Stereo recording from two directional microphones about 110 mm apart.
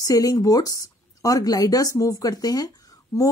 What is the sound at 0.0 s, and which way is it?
A woman's voice, 30° left (ahead or behind).